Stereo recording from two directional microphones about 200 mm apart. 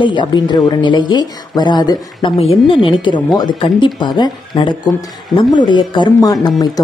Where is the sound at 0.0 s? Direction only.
25° left (ahead or behind).